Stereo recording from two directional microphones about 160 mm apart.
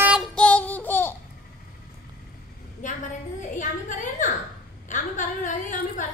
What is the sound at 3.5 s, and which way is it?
A woman's voice, 55° left (ahead or behind).